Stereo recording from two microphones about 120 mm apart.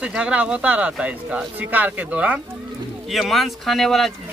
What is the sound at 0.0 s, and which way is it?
Speech, 10° right (ahead or behind).